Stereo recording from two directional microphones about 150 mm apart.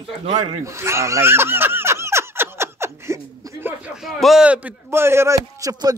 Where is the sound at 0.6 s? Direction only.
20° right (ahead or behind).